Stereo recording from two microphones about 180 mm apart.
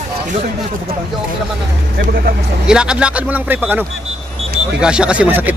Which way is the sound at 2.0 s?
60° right (ahead or behind).